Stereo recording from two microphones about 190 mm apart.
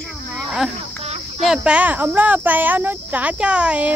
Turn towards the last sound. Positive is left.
turn(degrees=-5)  # may be behind; listen again after turning